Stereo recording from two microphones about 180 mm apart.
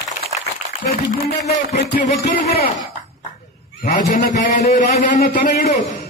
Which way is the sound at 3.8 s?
45° left (ahead or behind).